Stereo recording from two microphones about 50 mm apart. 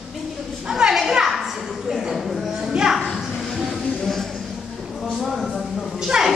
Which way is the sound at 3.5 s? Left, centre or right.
Centre.